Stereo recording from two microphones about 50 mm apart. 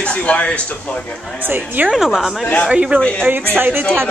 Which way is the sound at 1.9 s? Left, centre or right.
Centre.